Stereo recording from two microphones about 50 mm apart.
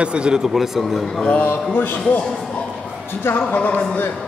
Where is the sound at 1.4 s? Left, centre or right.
Left.